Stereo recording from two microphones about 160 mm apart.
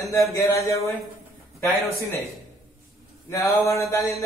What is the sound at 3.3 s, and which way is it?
Speech, 20° left (ahead or behind).